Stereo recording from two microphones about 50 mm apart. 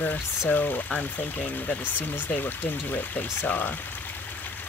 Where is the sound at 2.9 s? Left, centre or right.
Left.